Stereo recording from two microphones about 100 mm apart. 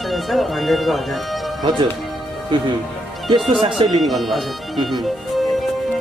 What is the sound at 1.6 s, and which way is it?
Speech, 50° right (ahead or behind).